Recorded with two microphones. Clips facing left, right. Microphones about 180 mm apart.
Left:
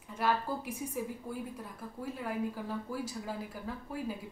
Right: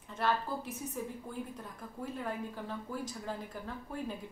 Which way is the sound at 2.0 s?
5° left (ahead or behind).